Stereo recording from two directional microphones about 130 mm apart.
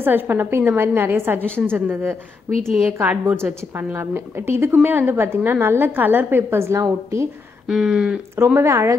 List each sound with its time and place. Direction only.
0.0 s a woman's voice: 15° right (ahead or behind)
7.6 s a sound: 5° right (ahead or behind)
8.5 s a woman's voice: 20° right (ahead or behind)